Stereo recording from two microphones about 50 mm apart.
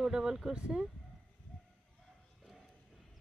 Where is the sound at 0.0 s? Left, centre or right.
Centre.